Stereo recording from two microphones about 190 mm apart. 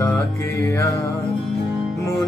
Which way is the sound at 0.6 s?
15° left (ahead or behind).